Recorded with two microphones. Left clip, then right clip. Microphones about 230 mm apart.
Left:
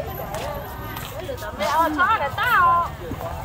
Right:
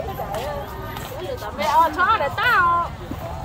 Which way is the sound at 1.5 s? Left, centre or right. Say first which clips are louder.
Right 2 dB; right.